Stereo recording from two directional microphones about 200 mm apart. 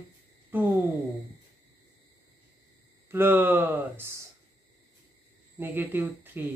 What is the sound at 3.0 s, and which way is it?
Speech, 10° right (ahead or behind).